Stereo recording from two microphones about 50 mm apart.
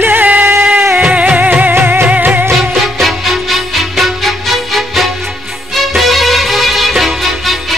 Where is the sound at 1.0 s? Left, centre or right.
Right.